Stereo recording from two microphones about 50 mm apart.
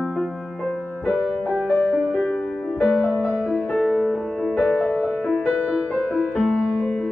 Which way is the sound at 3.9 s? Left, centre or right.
Centre.